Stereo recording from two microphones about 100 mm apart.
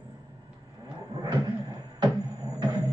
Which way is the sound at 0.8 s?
40° right (ahead or behind).